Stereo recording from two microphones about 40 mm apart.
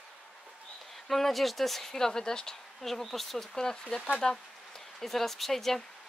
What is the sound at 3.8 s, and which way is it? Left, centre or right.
Speech, left.